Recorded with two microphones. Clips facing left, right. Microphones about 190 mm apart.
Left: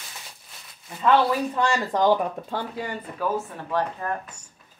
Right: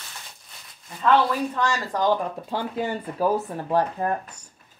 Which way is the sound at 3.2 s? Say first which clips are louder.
Right 4 dB; 40° right (ahead or behind).